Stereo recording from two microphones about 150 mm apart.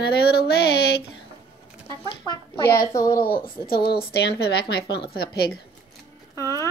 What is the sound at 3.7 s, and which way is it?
A woman's voice, 90° left.